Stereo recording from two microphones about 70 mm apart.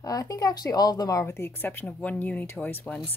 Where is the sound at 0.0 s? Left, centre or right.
Left.